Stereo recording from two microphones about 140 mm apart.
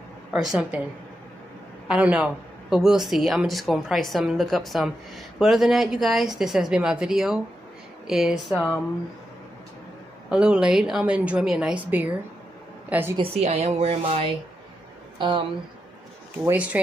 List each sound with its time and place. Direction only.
0.3 s a woman's voice: 5° right (ahead or behind)
1.9 s a woman's voice: 5° right (ahead or behind)
10.3 s a woman's voice: 5° right (ahead or behind)
13.2 s a woman's voice: 50° right (ahead or behind)
16.4 s a woman's voice: 10° right (ahead or behind)